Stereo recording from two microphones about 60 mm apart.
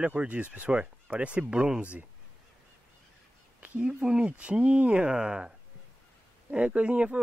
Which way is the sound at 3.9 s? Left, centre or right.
Centre.